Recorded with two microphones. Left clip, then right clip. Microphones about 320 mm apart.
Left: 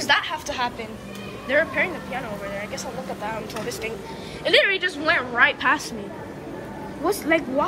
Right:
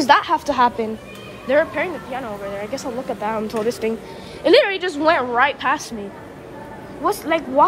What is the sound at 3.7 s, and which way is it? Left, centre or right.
Speech, right.